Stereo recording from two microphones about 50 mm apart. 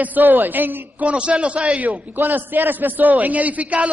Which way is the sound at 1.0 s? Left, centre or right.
Right.